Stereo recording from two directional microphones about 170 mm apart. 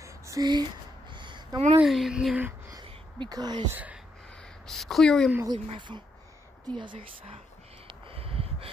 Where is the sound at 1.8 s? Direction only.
Centre (ahead or behind).